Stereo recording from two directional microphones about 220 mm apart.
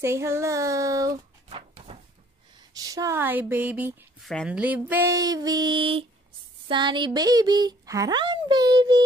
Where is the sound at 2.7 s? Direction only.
15° right (ahead or behind).